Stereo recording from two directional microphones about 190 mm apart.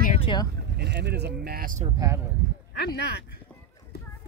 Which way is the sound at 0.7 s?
60° right (ahead or behind).